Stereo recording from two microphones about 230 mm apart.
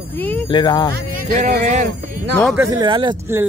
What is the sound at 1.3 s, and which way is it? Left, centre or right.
Speech, right.